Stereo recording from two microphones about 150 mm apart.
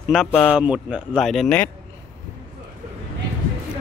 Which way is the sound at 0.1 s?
Centre (ahead or behind).